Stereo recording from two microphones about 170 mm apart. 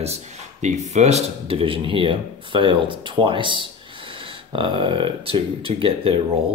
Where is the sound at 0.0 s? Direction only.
40° right (ahead or behind).